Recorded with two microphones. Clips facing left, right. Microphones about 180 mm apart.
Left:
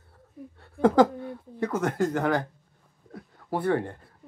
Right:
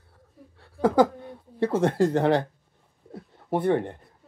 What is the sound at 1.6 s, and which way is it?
Speech, 30° right (ahead or behind).